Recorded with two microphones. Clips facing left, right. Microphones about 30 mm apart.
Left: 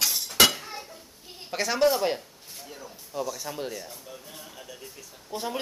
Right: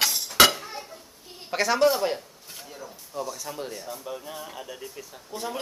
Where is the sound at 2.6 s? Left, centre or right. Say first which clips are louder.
Right 1 dB; centre.